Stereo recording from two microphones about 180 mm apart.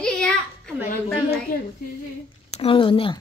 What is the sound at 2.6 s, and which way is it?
Speech, 30° left (ahead or behind).